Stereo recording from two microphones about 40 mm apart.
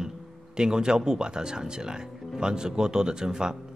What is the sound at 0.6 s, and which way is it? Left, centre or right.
Speech, centre.